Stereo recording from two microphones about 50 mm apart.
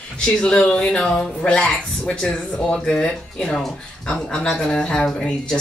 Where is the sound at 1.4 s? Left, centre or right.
Left.